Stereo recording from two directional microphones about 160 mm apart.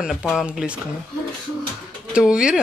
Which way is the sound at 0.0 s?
Centre (ahead or behind).